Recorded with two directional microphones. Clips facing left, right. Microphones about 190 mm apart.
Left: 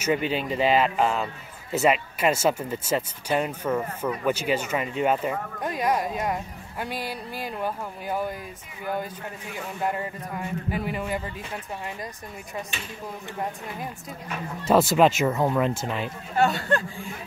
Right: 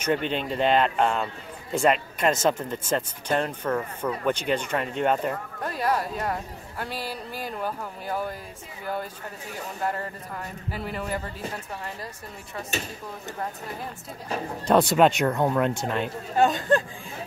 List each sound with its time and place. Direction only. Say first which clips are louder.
0.0 s a man's voice: left 1 dB; 5° left (ahead or behind)
9.8 s speech: left 2 dB; 10° left (ahead or behind)
12.7 s speech: right 6 dB; 40° right (ahead or behind)
14.7 s a man's voice: even; centre (ahead or behind)
16.4 s speech: right 3 dB; 20° right (ahead or behind)